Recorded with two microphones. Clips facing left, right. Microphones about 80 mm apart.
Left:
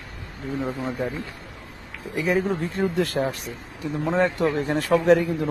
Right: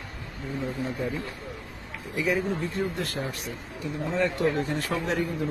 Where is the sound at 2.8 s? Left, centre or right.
Left.